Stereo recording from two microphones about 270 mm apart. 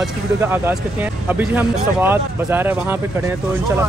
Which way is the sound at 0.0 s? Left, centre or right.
Centre.